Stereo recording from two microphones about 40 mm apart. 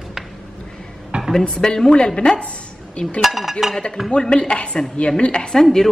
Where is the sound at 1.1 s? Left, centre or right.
Right.